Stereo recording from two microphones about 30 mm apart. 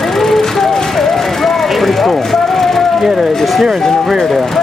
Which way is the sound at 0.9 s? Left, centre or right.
Centre.